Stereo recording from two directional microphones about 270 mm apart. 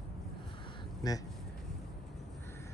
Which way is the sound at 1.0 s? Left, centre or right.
Centre.